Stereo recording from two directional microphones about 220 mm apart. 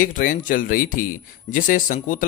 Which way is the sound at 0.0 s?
40° left (ahead or behind).